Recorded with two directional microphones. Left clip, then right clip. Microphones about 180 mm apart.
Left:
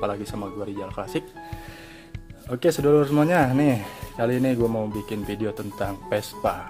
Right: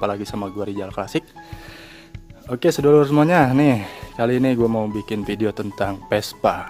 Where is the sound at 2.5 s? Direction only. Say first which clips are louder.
Right 4 dB; 25° right (ahead or behind).